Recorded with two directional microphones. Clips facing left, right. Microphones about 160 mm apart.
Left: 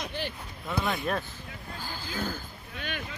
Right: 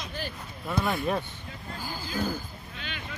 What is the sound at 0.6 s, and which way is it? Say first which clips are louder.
Speech: right 2 dB; centre (ahead or behind).